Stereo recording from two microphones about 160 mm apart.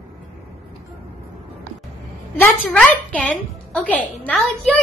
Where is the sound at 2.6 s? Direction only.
10° left (ahead or behind).